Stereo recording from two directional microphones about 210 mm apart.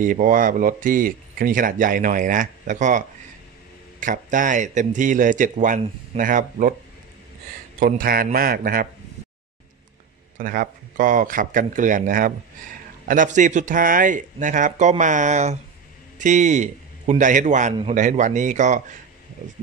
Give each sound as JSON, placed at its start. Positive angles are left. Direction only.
{"t": 0.0, "sound": "speech", "side_deg": -40}
{"t": 7.8, "sound": "speech", "side_deg": -45}
{"t": 10.3, "sound": "a man's voice", "side_deg": -40}